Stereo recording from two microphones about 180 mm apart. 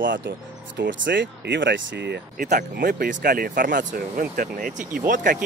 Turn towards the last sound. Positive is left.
turn(degrees=-50)  # may be behind; listen again after turning